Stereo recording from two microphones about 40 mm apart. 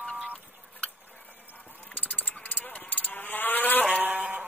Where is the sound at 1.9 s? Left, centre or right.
Left.